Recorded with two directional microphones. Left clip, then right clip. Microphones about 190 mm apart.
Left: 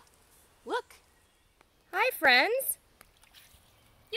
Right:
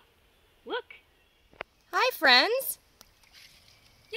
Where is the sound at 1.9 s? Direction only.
50° right (ahead or behind).